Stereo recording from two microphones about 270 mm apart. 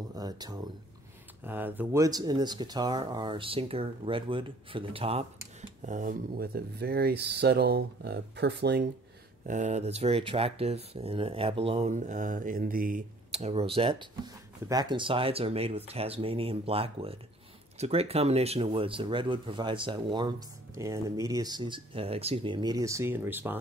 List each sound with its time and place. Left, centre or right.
0.1 s a sound: centre
1.4 s speech: centre; by 8.9 s right
9.5 s speech: right; by 23.6 s centre